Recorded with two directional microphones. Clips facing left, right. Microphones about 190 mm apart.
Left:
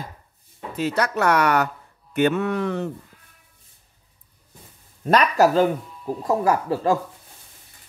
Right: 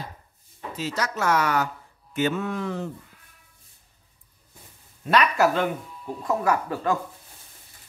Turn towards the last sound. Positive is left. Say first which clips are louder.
# left 4 dB
turn(degrees=35)  # may be behind; listen again after turning